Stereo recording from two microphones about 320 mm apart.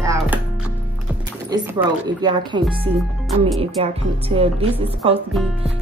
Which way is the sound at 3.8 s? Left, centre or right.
Centre.